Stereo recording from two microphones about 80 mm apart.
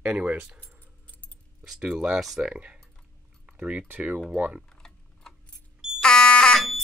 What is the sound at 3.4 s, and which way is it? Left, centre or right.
Keys jangling, centre.